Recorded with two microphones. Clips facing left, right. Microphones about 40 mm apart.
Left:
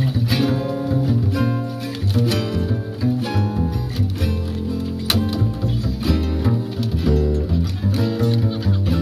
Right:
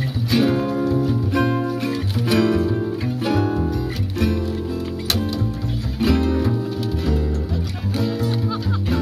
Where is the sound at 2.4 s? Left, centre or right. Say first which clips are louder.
Right 6 dB; right.